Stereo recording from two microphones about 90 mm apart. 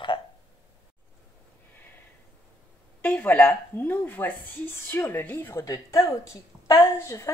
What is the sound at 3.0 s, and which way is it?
A woman's voice, 20° left (ahead or behind).